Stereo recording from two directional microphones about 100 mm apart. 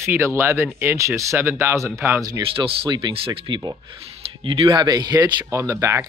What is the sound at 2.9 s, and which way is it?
Speech, 50° right (ahead or behind).